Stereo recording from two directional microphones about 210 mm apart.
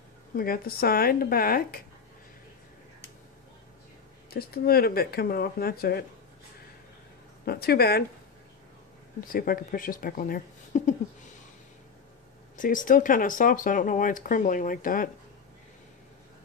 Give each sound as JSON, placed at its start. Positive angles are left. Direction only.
{"t": 0.4, "sound": "speech", "side_deg": 45}
{"t": 4.3, "sound": "speech", "side_deg": 45}
{"t": 7.4, "sound": "speech", "side_deg": 50}
{"t": 9.3, "sound": "speech", "side_deg": 45}
{"t": 12.5, "sound": "speech", "side_deg": 40}